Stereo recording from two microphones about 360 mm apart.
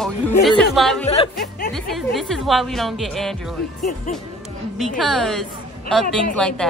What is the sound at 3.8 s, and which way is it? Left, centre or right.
Speech, left.